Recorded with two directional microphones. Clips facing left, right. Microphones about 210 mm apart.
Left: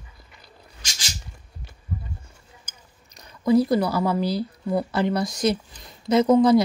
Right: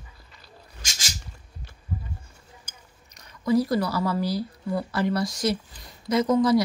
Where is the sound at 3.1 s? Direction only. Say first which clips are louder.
Left 4 dB; 25° left (ahead or behind).